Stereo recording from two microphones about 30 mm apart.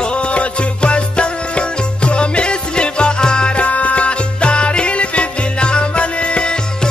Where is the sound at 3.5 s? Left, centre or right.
Left.